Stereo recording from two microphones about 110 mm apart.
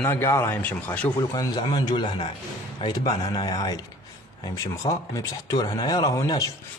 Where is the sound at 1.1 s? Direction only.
40° left (ahead or behind).